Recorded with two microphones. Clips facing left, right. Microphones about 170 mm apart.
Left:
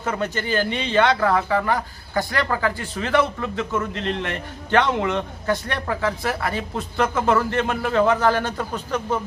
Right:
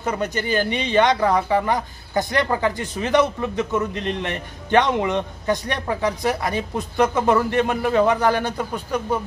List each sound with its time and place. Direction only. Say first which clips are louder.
0.0 s a man's voice: right 1 dB; 15° right (ahead or behind)